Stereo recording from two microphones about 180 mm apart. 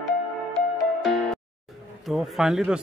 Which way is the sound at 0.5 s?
Centre (ahead or behind).